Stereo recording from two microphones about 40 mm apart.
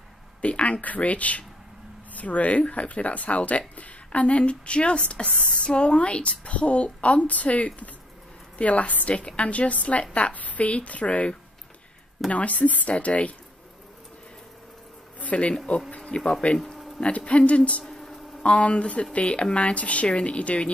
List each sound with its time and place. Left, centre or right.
0.4 s speech: left
15.5 s speech: left
17.8 s a sound: centre
18.4 s speech: left